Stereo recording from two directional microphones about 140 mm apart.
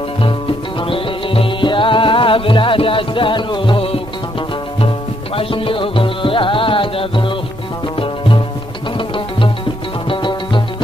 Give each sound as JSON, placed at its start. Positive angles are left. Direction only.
{"t": 0.2, "sound": "music", "side_deg": 40}
{"t": 8.9, "sound": "music", "side_deg": 40}